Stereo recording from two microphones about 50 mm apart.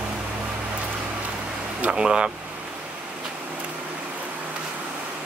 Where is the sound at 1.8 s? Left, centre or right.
Centre.